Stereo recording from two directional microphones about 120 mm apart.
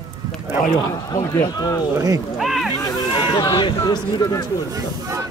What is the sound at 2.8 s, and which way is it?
Speech, 35° left (ahead or behind).